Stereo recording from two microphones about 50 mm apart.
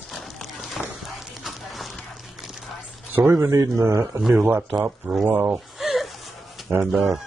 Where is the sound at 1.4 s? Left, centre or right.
Centre.